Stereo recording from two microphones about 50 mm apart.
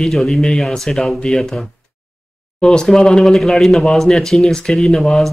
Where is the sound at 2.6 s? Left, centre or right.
Centre.